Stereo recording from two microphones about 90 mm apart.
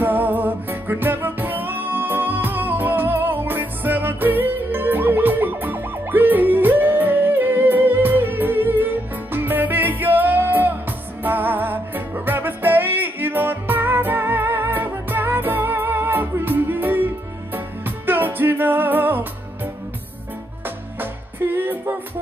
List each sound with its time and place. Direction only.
0.0 s music: 20° right (ahead or behind)